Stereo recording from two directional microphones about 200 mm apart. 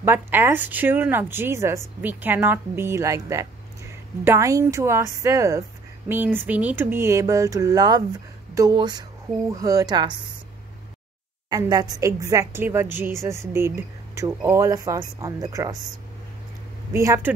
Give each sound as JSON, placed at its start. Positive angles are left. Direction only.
{"t": 0.0, "sound": "speech", "side_deg": -10}
{"t": 11.5, "sound": "speech", "side_deg": -20}
{"t": 15.7, "sound": "speech", "side_deg": 0}
{"t": 16.9, "sound": "speech", "side_deg": -15}